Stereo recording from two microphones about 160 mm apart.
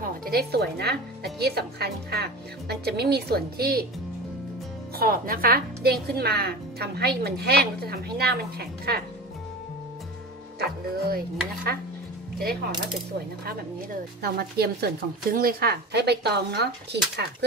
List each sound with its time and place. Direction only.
0.0 s a woman's voice: 70° right (ahead or behind)
4.9 s a woman's voice: 70° right (ahead or behind)
10.6 s speech: 70° right (ahead or behind)
14.2 s a woman's voice: 80° right